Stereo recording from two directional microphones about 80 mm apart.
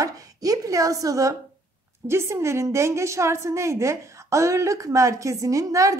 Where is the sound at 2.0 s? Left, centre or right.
Right.